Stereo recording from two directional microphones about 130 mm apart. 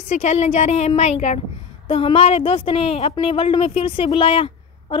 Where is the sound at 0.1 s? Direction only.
60° left (ahead or behind).